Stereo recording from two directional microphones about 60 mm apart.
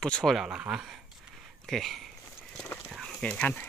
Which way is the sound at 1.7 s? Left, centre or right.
Centre.